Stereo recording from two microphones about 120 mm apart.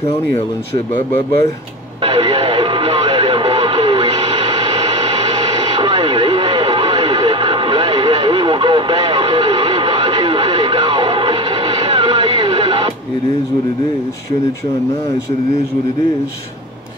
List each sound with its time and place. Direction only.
2.0 s radio: 50° right (ahead or behind)